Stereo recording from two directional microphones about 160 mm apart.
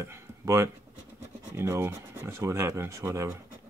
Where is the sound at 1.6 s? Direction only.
15° right (ahead or behind).